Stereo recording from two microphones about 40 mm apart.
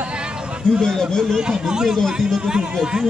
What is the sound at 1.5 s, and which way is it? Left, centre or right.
A man's voice, centre.